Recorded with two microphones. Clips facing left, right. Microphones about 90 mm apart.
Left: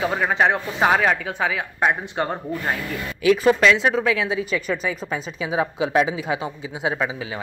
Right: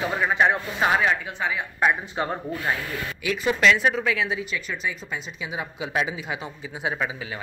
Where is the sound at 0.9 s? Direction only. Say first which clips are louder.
Left 3 dB; 90° left.